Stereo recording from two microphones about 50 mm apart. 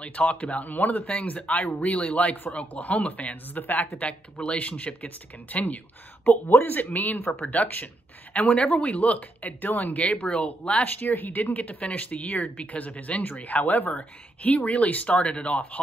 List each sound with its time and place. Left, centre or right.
0.0 s speech: left
4.0 s speech: left
7.4 s speech: left
8.5 s speech: left